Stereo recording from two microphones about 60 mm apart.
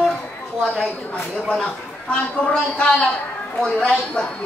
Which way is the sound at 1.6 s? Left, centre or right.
Left.